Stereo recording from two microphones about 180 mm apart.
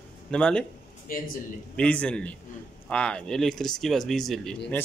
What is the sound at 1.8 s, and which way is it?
Speech, 5° left (ahead or behind).